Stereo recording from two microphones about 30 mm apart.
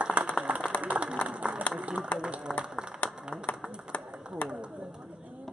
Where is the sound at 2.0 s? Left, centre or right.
Centre.